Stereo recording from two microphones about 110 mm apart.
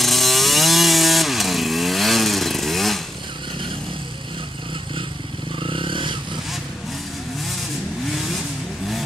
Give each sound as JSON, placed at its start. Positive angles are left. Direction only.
{"t": 0.0, "sound": "chainsaw", "side_deg": 0}
{"t": 5.6, "sound": "vehicle", "side_deg": -50}